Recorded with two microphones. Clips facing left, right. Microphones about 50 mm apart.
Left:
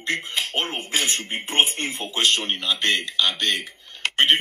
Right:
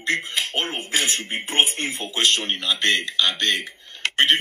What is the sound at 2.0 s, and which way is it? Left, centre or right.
A man's voice, centre.